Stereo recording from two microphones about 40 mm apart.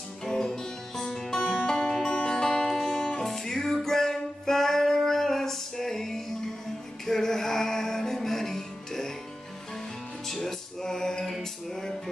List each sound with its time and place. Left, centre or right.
0.2 s guitar: centre
1.7 s music: centre
10.4 s music: centre